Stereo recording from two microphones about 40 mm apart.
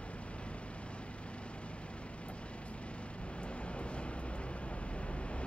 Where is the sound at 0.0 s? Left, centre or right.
Left.